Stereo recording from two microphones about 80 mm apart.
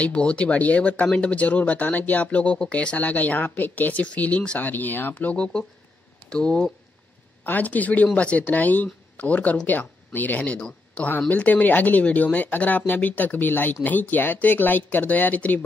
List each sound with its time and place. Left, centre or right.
0.0 s speech: centre
7.4 s speech: left